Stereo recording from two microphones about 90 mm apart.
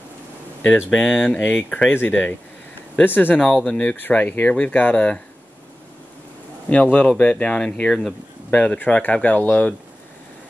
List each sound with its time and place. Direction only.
0.6 s speech: 15° left (ahead or behind)
1.4 s speech: 20° left (ahead or behind)
3.6 s speech: 10° left (ahead or behind)
3.9 s speech: 20° left (ahead or behind)
6.7 s speech: 15° left (ahead or behind)